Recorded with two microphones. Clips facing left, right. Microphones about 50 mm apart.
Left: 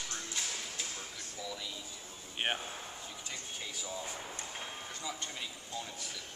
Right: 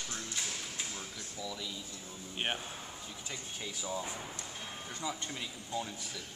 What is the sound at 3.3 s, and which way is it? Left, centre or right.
Speech, centre.